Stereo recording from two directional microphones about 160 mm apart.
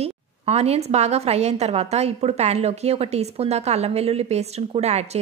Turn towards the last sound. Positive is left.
turn(degrees=-40)  # may be behind; listen again after turning